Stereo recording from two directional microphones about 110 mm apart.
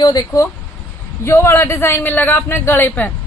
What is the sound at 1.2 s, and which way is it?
A man's voice, 25° left (ahead or behind).